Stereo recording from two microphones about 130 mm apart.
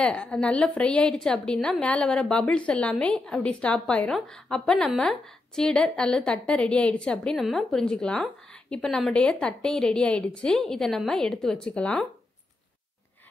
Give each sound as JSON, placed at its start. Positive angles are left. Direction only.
{"t": 0.0, "sound": "a woman's voice", "side_deg": 10}